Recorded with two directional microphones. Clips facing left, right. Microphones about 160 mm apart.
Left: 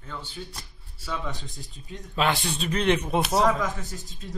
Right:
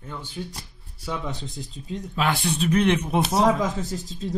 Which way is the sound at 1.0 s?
20° right (ahead or behind).